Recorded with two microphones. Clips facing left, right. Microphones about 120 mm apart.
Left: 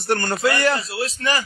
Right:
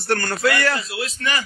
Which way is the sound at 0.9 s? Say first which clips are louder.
Left 2 dB; 35° left (ahead or behind).